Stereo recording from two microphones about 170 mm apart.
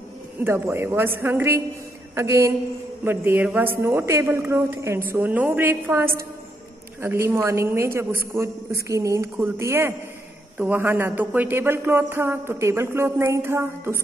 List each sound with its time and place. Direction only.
0.4 s speech: 15° right (ahead or behind)